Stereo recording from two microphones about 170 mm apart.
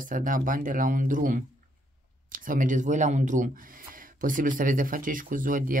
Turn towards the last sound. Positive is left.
turn(degrees=-55)  # may be behind; listen again after turning